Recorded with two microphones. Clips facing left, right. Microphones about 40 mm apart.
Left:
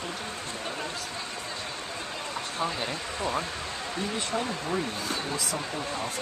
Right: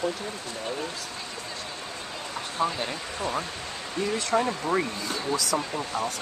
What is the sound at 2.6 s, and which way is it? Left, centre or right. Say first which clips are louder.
Speech: right 4 dB; centre.